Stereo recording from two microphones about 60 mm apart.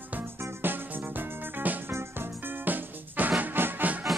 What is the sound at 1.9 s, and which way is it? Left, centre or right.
Music, right.